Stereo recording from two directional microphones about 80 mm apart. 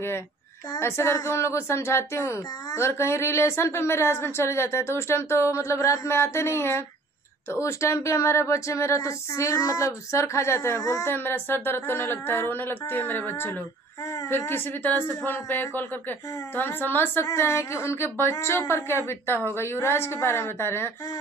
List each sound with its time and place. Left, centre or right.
0.7 s a woman's voice: left
10.8 s speech: left
11.1 s a woman's voice: left